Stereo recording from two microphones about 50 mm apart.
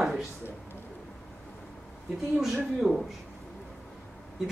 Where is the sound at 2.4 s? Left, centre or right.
Centre.